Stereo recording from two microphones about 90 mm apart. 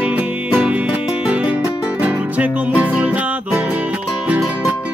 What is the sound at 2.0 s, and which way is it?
Music, 15° right (ahead or behind).